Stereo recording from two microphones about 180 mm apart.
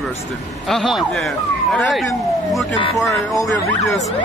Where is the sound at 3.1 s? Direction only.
20° left (ahead or behind).